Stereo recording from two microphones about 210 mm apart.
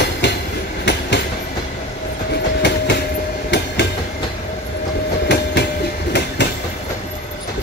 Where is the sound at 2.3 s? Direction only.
55° left (ahead or behind).